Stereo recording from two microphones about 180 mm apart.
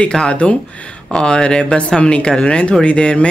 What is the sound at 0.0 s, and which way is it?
Speech, 5° left (ahead or behind).